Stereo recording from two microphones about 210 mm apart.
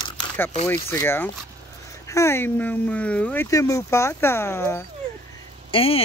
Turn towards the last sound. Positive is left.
turn(degrees=25)  # may be behind; listen again after turning